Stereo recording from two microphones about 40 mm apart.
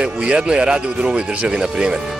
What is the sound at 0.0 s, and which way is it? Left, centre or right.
Speech, right.